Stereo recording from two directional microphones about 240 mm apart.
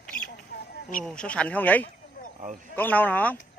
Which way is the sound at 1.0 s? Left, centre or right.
Centre.